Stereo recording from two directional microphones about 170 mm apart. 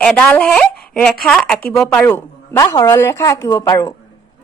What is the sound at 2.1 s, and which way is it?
A woman's voice, 20° left (ahead or behind).